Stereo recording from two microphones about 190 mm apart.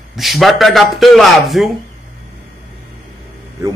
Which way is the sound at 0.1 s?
Centre (ahead or behind).